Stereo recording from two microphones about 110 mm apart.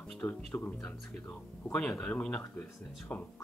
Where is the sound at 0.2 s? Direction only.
15° left (ahead or behind).